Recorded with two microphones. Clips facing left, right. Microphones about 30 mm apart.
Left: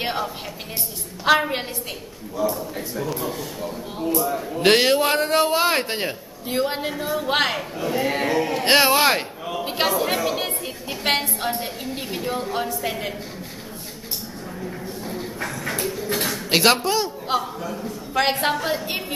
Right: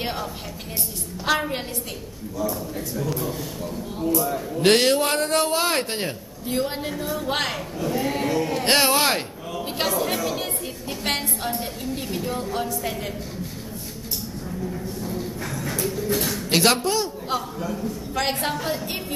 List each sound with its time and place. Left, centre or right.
0.0 s a woman's voice: centre
3.1 s a man's voice: centre
14.6 s a sound: left
15.8 s a man's voice: centre